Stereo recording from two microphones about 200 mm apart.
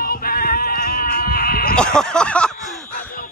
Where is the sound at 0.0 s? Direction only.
50° left (ahead or behind).